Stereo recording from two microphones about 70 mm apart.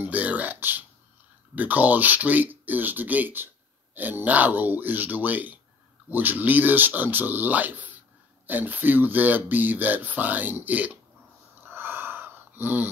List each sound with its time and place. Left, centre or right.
0.0 s a sound: right
1.5 s speech: right
11.6 s wheeze: right